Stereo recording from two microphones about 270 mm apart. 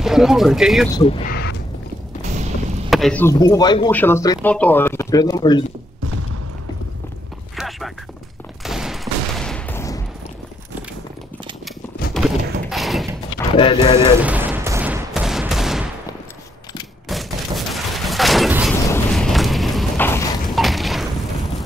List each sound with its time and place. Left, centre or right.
0.0 s speech: centre
0.9 s speech: centre
1.2 s speech: left
2.9 s speech: centre
7.5 s a sound: centre
8.6 s fusillade: centre
12.1 s a sound: centre
13.6 s speech: left
14.2 s fusillade: centre
17.1 s a sound: centre